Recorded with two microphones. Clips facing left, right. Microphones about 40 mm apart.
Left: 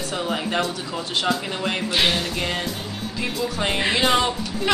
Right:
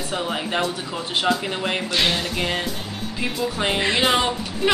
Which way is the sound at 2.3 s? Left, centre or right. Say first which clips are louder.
Right 1 dB; centre.